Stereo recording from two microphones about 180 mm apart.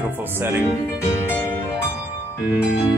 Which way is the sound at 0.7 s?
15° left (ahead or behind).